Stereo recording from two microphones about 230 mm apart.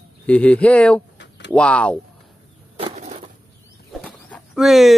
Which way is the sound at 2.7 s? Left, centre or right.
Right.